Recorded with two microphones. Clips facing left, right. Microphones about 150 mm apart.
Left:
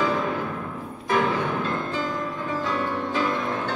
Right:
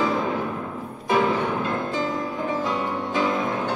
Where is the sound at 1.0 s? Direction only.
20° right (ahead or behind).